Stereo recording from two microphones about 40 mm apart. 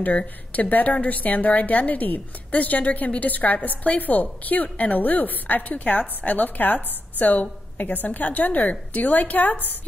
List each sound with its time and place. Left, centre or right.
0.5 s a woman's voice: left